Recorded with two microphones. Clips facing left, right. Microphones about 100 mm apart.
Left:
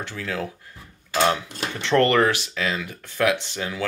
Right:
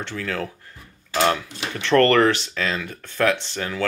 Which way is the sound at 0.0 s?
15° left (ahead or behind).